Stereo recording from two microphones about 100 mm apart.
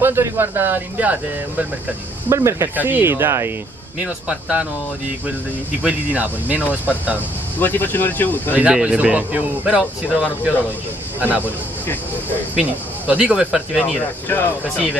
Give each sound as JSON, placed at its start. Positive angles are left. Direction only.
{"t": 0.0, "sound": "speech", "side_deg": -25}
{"t": 2.2, "sound": "speech", "side_deg": -25}
{"t": 4.0, "sound": "speech", "side_deg": -10}
{"t": 5.9, "sound": "speech", "side_deg": -15}
{"t": 7.6, "sound": "speech", "side_deg": 20}
{"t": 8.5, "sound": "speech", "side_deg": -10}
{"t": 12.5, "sound": "speech", "side_deg": -10}
{"t": 14.3, "sound": "speech", "side_deg": 15}